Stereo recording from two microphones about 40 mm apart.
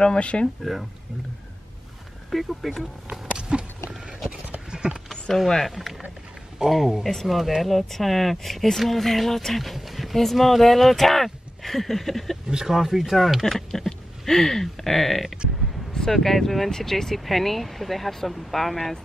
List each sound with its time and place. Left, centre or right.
0.0 s speech: left
2.3 s speech: centre
3.1 s a sound: right
4.6 s a sound: right
5.3 s speech: centre
5.7 s speech: centre
6.6 s speech: centre
7.2 s speech: centre
12.6 s speech: centre
13.5 s speech: centre